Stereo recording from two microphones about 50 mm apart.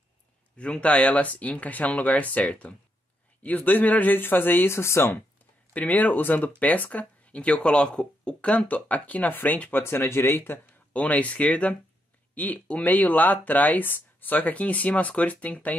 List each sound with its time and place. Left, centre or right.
0.6 s speech: left
4.7 s speech: left
5.7 s speech: left
9.7 s speech: left
10.9 s speech: left